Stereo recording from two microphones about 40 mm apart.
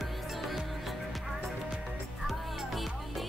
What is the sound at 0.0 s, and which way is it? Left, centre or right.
Music, centre.